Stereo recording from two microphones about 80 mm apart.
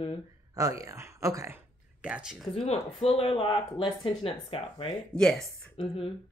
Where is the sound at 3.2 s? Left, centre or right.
Left.